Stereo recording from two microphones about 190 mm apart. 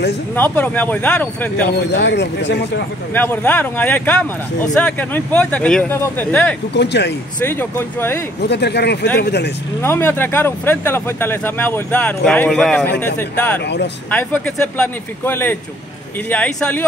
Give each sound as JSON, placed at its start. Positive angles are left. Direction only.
{"t": 0.4, "sound": "speech", "side_deg": 10}
{"t": 1.9, "sound": "speech", "side_deg": 65}
{"t": 3.2, "sound": "speech", "side_deg": 10}
{"t": 6.7, "sound": "speech", "side_deg": 65}
{"t": 7.3, "sound": "speech", "side_deg": 10}
{"t": 8.4, "sound": "speech", "side_deg": 60}
{"t": 9.8, "sound": "speech", "side_deg": 10}
{"t": 14.1, "sound": "speech", "side_deg": 10}